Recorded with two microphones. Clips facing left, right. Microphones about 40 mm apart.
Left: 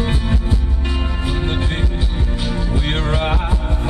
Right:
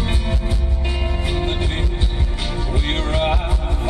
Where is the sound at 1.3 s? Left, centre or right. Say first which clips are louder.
Left 1 dB; centre.